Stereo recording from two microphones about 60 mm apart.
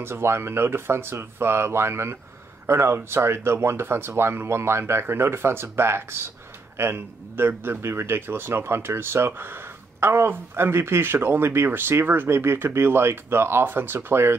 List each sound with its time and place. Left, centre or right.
0.0 s a man's voice: right